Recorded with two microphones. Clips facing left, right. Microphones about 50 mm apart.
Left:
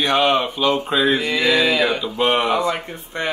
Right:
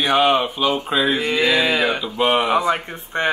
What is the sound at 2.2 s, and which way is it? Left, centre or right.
Mantra, centre.